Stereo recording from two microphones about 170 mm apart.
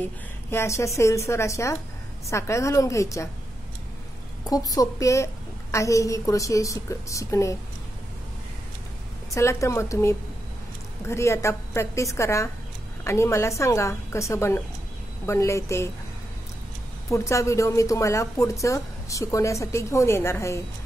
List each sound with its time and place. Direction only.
0.0 s a woman's voice: 15° left (ahead or behind)
4.5 s a woman's voice: 20° left (ahead or behind)
9.3 s a woman's voice: 15° left (ahead or behind)
17.1 s a woman's voice: 20° left (ahead or behind)